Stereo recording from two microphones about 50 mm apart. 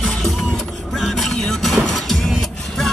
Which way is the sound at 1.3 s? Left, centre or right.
Centre.